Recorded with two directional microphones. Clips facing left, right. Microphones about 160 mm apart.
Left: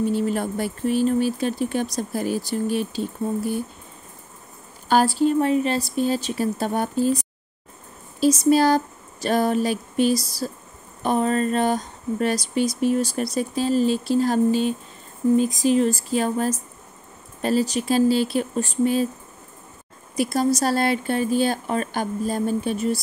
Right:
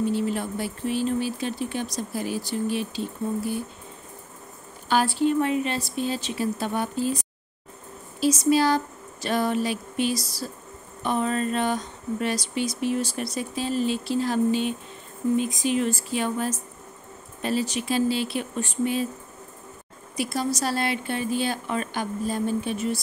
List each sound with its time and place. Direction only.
0.1 s speech: 45° left (ahead or behind)
4.8 s speech: 40° left (ahead or behind)
8.2 s speech: 45° left (ahead or behind)
20.2 s speech: 40° left (ahead or behind)